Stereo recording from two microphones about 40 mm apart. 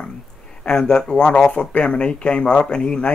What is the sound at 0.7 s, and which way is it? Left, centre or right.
Speech, centre.